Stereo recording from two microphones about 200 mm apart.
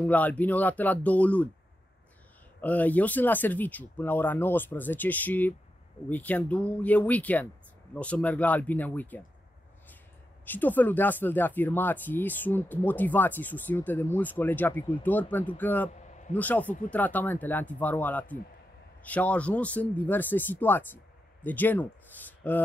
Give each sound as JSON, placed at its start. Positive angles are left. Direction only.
{"t": 0.0, "sound": "speech", "side_deg": 10}
{"t": 2.6, "sound": "speech", "side_deg": 10}
{"t": 10.4, "sound": "speech", "side_deg": 10}
{"t": 15.9, "sound": "a sound", "side_deg": 35}
{"t": 16.3, "sound": "speech", "side_deg": 10}